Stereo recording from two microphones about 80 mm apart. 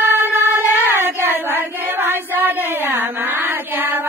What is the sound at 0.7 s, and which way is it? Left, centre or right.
Child singing, right.